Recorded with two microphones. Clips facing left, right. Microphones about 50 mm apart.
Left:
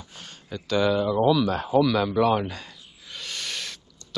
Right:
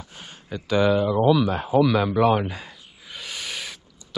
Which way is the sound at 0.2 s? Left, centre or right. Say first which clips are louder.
Right 2 dB; centre.